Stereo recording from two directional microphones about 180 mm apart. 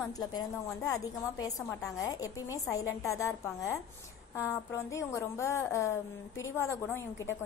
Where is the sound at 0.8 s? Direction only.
15° left (ahead or behind).